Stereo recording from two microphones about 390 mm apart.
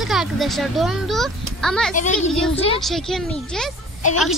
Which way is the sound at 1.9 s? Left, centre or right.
Centre.